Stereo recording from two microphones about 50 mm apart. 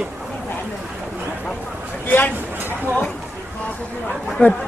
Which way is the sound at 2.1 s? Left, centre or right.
Left.